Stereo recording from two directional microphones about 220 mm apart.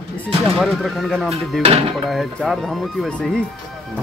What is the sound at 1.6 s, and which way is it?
Speech, 30° right (ahead or behind).